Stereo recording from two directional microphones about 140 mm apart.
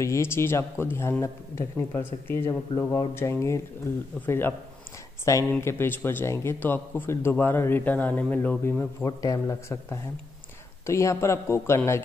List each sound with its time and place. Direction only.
0.0 s speech: 20° left (ahead or behind)
9.0 s speech: 25° left (ahead or behind)